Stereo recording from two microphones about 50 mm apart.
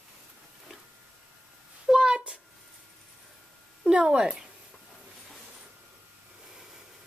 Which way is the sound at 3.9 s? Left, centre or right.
Centre.